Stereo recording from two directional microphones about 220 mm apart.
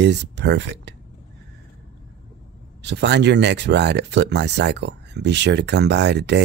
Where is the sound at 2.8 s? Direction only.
50° right (ahead or behind).